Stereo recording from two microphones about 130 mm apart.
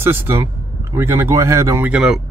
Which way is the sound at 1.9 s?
5° right (ahead or behind).